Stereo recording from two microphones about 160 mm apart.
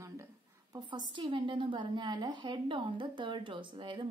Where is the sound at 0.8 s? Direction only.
30° right (ahead or behind).